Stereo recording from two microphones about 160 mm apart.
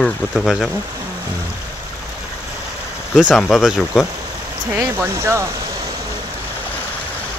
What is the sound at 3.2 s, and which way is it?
Speech, 5° right (ahead or behind).